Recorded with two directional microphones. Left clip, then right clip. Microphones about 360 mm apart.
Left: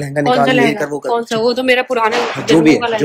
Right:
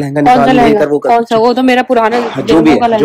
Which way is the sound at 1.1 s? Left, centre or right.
Right.